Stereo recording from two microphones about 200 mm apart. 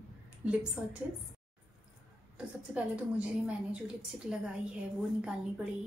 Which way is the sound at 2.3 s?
5° right (ahead or behind).